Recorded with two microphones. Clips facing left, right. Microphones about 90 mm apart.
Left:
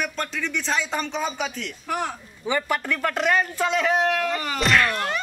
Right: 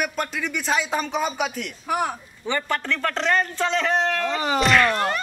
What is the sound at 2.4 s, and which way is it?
A man's voice, 10° left (ahead or behind).